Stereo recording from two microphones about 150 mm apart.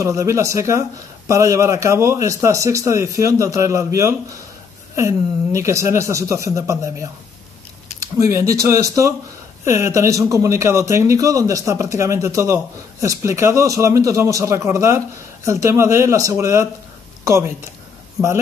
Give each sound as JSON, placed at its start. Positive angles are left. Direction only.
{"t": 0.0, "sound": "speech", "side_deg": -20}
{"t": 8.3, "sound": "speech", "side_deg": -20}
{"t": 17.2, "sound": "a sound", "side_deg": -20}